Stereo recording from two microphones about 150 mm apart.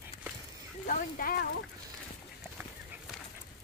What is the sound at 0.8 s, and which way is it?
Speech, 70° left (ahead or behind).